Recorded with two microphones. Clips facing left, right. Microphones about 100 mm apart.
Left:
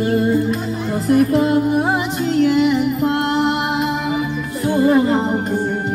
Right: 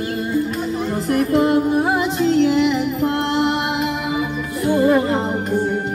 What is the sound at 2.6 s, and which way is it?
Music, 5° left (ahead or behind).